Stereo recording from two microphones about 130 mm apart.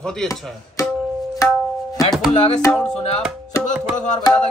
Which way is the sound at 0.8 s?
25° left (ahead or behind).